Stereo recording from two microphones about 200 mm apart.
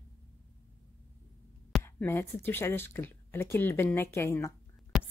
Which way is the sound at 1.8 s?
10° left (ahead or behind).